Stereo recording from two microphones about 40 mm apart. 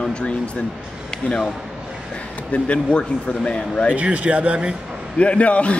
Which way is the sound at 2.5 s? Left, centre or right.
Left.